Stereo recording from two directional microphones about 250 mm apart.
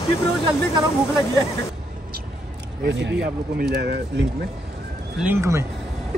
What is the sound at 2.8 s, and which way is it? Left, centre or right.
Speech, right.